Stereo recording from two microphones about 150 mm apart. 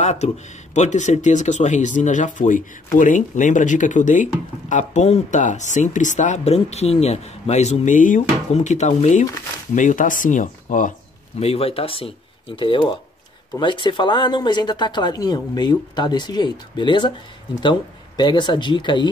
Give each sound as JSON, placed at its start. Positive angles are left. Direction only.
{"t": 0.0, "sound": "speech", "side_deg": 45}
{"t": 11.3, "sound": "speech", "side_deg": 45}